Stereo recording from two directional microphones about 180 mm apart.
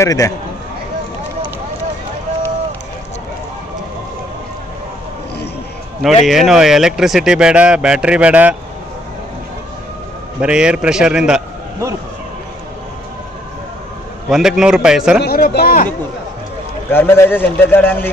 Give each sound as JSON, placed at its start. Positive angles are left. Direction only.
{"t": 0.0, "sound": "a man's voice", "side_deg": 20}
{"t": 6.2, "sound": "speech", "side_deg": 0}
{"t": 10.4, "sound": "speech", "side_deg": -5}
{"t": 14.3, "sound": "speech", "side_deg": -5}
{"t": 15.2, "sound": "speech", "side_deg": 60}
{"t": 16.9, "sound": "a man's voice", "side_deg": 15}